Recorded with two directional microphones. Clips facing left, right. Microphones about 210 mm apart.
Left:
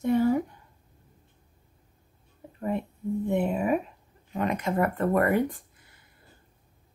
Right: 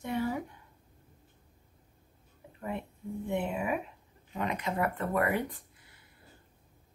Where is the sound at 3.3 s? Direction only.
40° left (ahead or behind).